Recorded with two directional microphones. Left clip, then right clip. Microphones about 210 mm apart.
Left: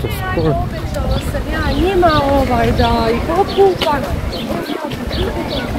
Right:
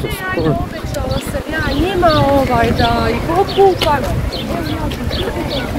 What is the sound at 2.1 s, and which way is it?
Speech, 55° right (ahead or behind).